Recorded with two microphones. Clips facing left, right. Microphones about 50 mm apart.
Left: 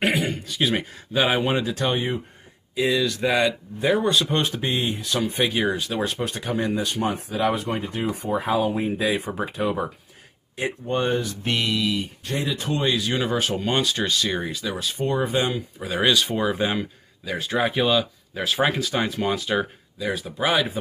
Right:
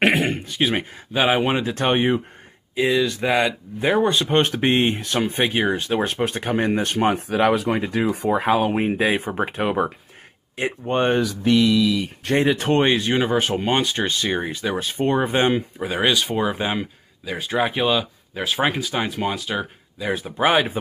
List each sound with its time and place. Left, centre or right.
0.0 s throat clearing: right
0.6 s speech: right
1.7 s speech: right; by 3.5 s centre
3.8 s speech: right
4.4 s speech: right
8.4 s speech: right
10.6 s speech: right
12.3 s speech: right
13.1 s speech: right
15.8 s speech: centre
20.0 s speech: right